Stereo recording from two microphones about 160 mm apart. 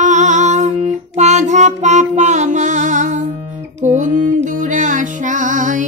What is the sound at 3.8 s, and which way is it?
Music, 50° right (ahead or behind).